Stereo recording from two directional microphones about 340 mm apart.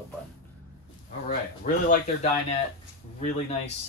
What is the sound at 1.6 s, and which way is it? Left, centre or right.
Speech, left.